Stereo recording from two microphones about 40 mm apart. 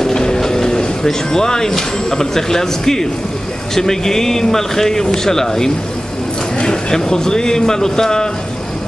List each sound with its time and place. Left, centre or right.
0.0 s a man's voice: centre